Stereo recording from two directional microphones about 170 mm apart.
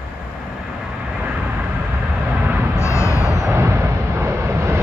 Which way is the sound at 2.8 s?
15° left (ahead or behind).